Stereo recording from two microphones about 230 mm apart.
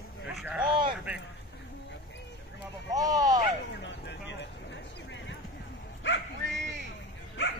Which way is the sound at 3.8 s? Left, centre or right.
Left.